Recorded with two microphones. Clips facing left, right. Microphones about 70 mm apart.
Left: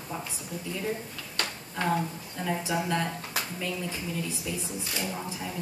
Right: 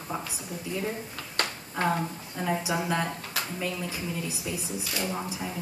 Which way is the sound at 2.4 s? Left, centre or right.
Centre.